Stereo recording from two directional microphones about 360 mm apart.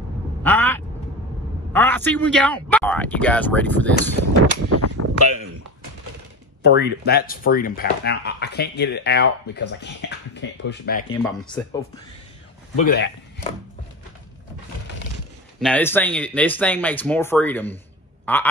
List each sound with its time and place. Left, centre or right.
0.4 s quack: centre
1.7 s a sound: centre
2.1 s speech: centre
3.9 s speech: left
6.6 s speech: left
11.1 s speech: centre
12.7 s speech: left
15.6 s speech: centre